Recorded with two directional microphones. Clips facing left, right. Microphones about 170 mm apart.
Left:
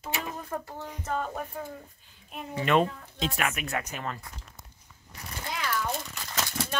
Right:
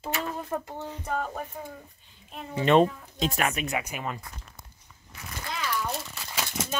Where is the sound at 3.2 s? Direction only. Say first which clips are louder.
Right 3 dB; 40° right (ahead or behind).